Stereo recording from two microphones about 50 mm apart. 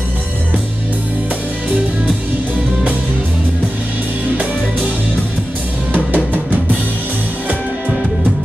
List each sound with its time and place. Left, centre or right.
5.9 s music: right